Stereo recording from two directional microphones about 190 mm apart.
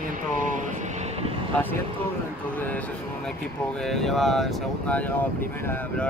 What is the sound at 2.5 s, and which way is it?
Speech, 10° left (ahead or behind).